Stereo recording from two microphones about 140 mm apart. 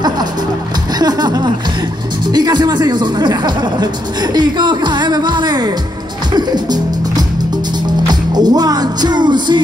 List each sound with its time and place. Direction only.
0.9 s a sound: 30° right (ahead or behind)
2.2 s speech: 30° right (ahead or behind)
6.3 s music: 30° right (ahead or behind)